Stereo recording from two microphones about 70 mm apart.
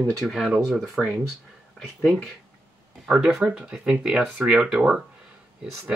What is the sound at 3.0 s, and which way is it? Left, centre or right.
Speech, centre.